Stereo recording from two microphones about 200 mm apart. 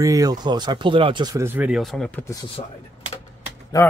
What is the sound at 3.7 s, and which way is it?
Speech, 15° left (ahead or behind).